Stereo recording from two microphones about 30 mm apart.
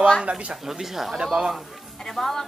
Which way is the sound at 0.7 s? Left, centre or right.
Centre.